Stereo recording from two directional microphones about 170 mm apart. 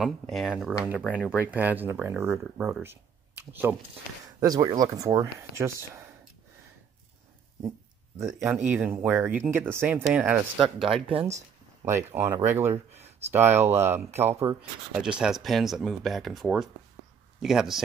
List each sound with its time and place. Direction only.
0.0 s speech: centre (ahead or behind)
2.8 s a sound: 10° right (ahead or behind)
4.4 s speech: 20° right (ahead or behind)
8.4 s speech: 10° right (ahead or behind)
10.6 s speech: 30° right (ahead or behind)
11.8 s speech: 15° right (ahead or behind)